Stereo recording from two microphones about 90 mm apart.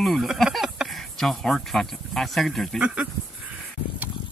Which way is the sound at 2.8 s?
10° right (ahead or behind).